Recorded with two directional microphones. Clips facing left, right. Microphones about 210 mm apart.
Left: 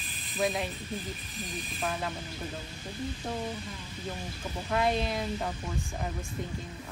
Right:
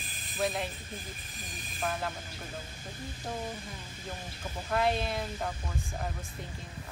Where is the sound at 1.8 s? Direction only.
Centre (ahead or behind).